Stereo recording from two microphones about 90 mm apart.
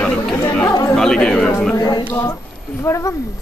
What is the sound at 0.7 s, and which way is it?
Speech, 40° left (ahead or behind).